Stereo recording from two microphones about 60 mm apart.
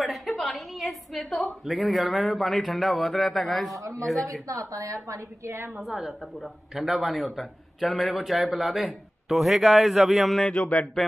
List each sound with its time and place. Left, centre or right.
0.0 s a sound: centre
1.4 s speech: centre
3.7 s a woman's voice: right
5.7 s speech: centre
10.4 s speech: centre